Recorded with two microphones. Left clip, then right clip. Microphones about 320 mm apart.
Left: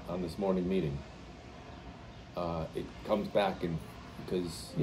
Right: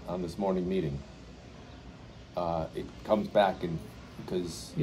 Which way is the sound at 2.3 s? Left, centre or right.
Centre.